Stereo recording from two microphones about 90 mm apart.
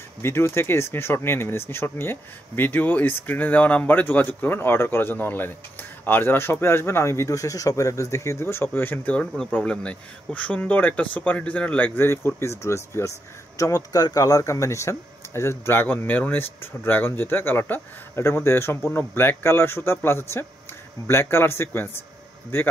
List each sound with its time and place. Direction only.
0.2 s speech: 25° left (ahead or behind)